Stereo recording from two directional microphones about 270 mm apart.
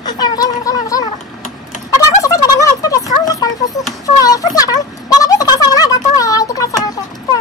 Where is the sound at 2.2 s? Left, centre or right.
Centre.